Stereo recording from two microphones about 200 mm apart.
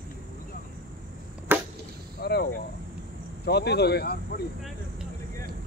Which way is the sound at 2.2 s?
55° left (ahead or behind).